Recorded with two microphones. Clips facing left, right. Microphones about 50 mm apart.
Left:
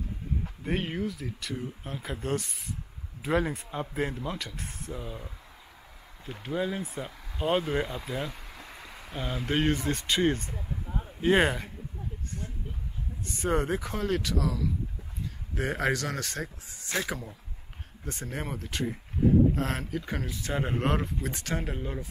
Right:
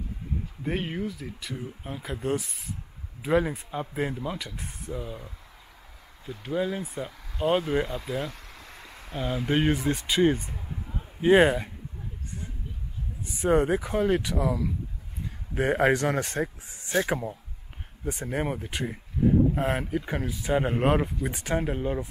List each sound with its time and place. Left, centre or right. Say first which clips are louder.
0.7 s speech: right 1 dB; centre
6.4 s speech: right 2 dB; centre
13.2 s speech: right 5 dB; centre
17.0 s speech: right 6 dB; right
18.0 s speech: right 7 dB; centre